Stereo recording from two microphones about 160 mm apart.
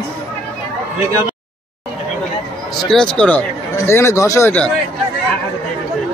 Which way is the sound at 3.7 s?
15° left (ahead or behind).